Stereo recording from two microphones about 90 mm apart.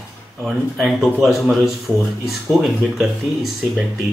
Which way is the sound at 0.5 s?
Centre (ahead or behind).